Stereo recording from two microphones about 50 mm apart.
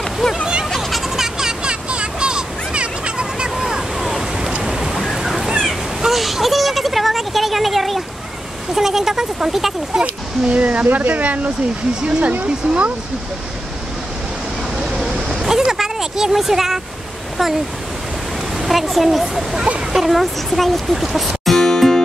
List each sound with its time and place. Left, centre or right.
0.7 s a sound: centre
10.0 s speech: right
12.0 s speech: centre
14.8 s vehicle: centre
18.7 s speech: centre
19.5 s speech: centre
20.0 s speech: centre